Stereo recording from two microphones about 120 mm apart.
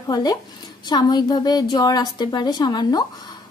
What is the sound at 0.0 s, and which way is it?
A woman's voice, 35° left (ahead or behind).